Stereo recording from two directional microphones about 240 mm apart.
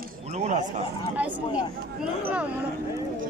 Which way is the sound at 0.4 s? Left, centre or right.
Right.